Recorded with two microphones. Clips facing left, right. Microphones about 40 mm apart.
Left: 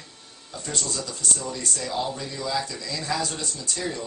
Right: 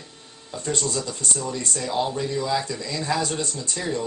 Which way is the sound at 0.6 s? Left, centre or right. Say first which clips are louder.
Right 5 dB; right.